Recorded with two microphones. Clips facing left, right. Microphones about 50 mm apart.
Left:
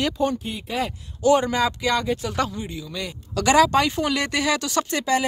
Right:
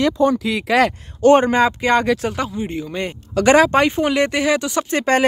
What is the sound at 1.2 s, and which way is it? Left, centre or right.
Speech, right.